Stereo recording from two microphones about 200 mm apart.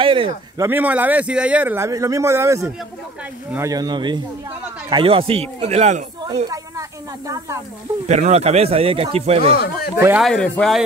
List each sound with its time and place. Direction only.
0.0 s speech: 25° right (ahead or behind)
0.7 s speech: 10° right (ahead or behind); by 6.0 s 35° right (ahead or behind)
6.5 s speech: 15° right (ahead or behind)
8.1 s speech: 35° right (ahead or behind)
9.5 s speech: 50° left (ahead or behind)
10.1 s speech: centre (ahead or behind)